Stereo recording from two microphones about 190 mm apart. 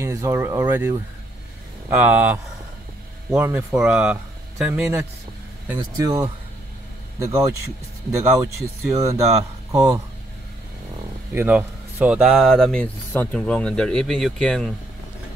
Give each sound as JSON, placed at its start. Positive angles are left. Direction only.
{"t": 0.0, "sound": "speech", "side_deg": -15}
{"t": 5.8, "sound": "a man's voice", "side_deg": -20}
{"t": 8.9, "sound": "speech", "side_deg": -15}
{"t": 11.3, "sound": "speech", "side_deg": -10}